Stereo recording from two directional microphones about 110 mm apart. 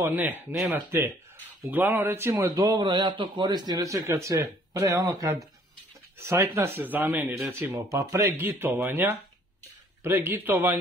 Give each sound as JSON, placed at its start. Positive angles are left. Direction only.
{"t": 0.0, "sound": "speech", "side_deg": -20}
{"t": 2.5, "sound": "a man's voice", "side_deg": -40}